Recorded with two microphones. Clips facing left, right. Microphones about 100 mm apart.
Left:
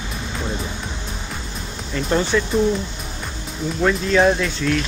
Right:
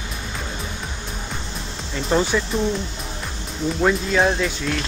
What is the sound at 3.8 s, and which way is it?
Speech, 5° right (ahead or behind).